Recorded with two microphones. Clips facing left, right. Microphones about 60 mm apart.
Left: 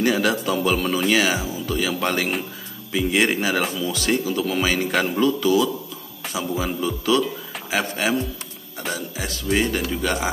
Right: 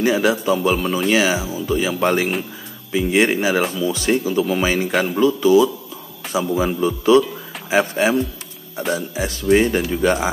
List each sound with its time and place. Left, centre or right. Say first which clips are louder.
0.0 s speech: right 3 dB; centre
3.8 s speech: right 4 dB; right
4.9 s speech: right 3 dB; centre
5.4 s speech: right 5 dB; right